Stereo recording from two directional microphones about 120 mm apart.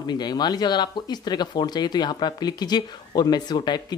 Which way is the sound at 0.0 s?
35° left (ahead or behind).